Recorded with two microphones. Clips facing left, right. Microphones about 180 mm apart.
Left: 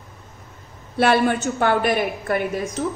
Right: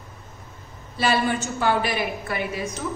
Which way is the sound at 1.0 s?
60° left (ahead or behind).